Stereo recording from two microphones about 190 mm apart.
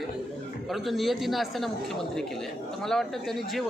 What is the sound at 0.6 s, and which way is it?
A man's voice, centre (ahead or behind).